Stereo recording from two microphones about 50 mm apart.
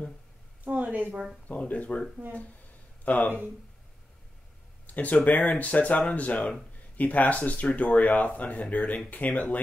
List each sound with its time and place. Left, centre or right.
0.7 s a woman's voice: right
1.5 s speech: left
3.1 s speech: left
4.8 s speech: left